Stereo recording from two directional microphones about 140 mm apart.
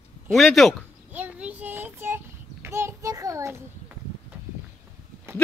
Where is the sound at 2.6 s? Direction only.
20° right (ahead or behind).